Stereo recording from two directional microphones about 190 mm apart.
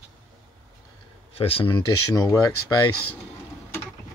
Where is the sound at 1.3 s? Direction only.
30° left (ahead or behind).